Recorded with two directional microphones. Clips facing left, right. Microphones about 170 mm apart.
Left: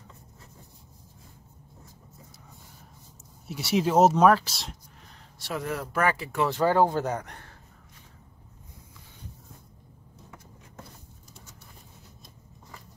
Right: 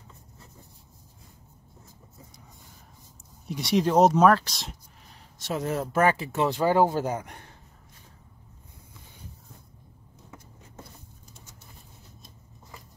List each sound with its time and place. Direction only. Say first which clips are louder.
3.4 s speech: right 1 dB; 5° left (ahead or behind)
5.4 s speech: right 3 dB; 20° right (ahead or behind)